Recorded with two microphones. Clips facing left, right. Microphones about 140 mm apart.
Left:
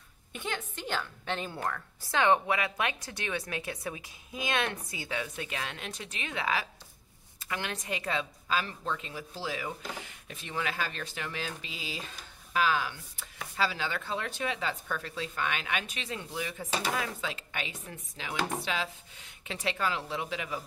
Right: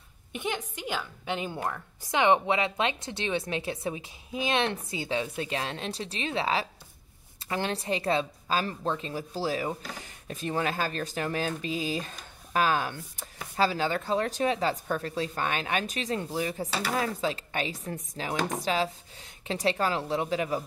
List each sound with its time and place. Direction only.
0.3 s a woman's voice: 15° right (ahead or behind); by 20.6 s 40° right (ahead or behind)